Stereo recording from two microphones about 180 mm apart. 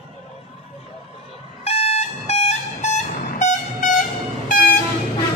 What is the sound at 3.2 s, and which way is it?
Vehicle, 45° left (ahead or behind).